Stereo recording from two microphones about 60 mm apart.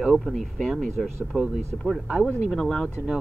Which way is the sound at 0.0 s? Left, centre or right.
Centre.